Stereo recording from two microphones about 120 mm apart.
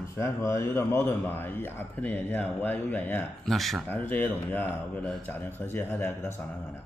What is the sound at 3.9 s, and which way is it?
Speech, 15° left (ahead or behind).